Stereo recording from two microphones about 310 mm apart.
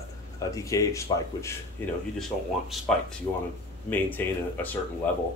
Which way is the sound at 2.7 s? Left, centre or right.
Centre.